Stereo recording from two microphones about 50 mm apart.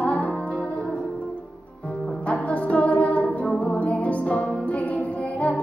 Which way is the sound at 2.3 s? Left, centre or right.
Left.